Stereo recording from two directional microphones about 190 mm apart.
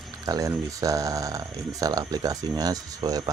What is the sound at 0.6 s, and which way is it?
Mantra, 20° right (ahead or behind).